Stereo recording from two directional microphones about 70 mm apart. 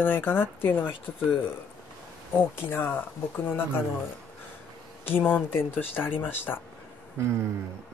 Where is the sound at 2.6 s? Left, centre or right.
Left.